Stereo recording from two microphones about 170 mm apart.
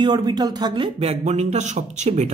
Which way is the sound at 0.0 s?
25° right (ahead or behind).